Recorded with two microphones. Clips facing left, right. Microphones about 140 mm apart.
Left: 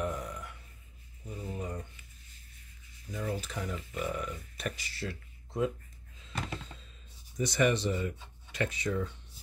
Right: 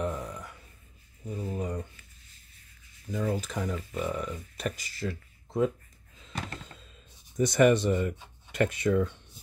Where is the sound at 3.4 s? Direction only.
45° right (ahead or behind).